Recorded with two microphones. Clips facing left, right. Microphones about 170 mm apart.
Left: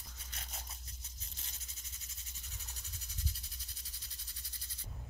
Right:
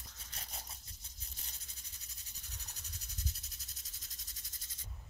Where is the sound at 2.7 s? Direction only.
40° right (ahead or behind).